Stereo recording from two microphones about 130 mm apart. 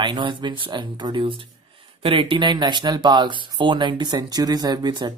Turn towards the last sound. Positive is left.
turn(degrees=-35)  # may be behind; listen again after turning